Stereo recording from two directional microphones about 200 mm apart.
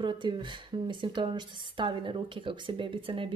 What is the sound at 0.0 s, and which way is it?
Speech, 25° right (ahead or behind).